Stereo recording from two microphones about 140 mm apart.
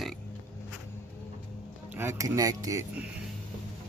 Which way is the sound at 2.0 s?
20° right (ahead or behind).